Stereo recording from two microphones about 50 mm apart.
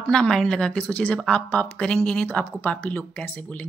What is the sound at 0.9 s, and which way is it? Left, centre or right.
Speech, left.